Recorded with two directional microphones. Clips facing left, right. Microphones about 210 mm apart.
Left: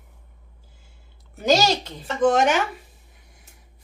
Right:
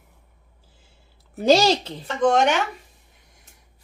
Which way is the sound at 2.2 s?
5° left (ahead or behind).